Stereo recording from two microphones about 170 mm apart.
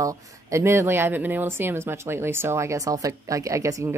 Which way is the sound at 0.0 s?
20° right (ahead or behind).